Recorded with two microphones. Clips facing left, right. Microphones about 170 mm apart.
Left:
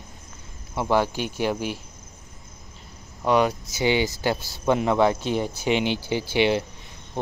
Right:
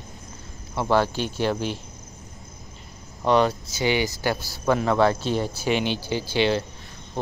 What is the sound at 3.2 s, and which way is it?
Speech, 10° left (ahead or behind).